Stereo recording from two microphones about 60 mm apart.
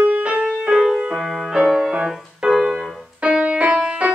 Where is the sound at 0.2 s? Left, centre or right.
Centre.